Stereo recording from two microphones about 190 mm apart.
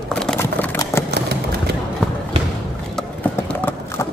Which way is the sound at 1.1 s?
60° right (ahead or behind).